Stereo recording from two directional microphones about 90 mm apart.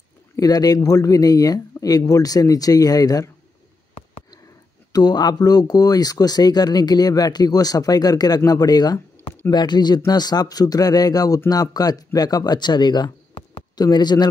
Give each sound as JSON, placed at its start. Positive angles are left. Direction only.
{"t": 0.4, "sound": "a man's voice", "side_deg": 45}
{"t": 4.9, "sound": "a man's voice", "side_deg": 50}